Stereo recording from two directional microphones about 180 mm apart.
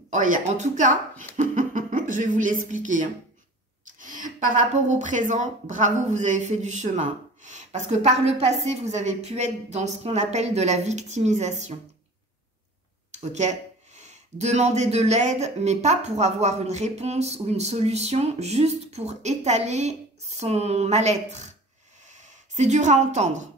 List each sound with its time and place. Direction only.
0.1 s a woman's voice: 45° right (ahead or behind)
13.1 s speech: 40° right (ahead or behind)
22.0 s a sound: 40° right (ahead or behind)